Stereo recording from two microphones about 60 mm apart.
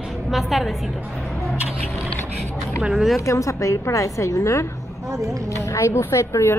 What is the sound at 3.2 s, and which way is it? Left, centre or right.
A woman's voice, left.